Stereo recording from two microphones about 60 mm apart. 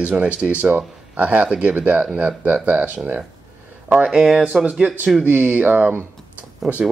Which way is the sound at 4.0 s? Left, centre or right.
Centre.